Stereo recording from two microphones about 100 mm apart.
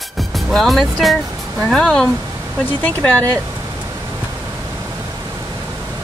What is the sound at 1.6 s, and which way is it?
Speech, 10° left (ahead or behind).